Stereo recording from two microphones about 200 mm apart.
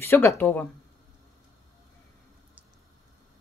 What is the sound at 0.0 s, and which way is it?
Speech, 10° left (ahead or behind).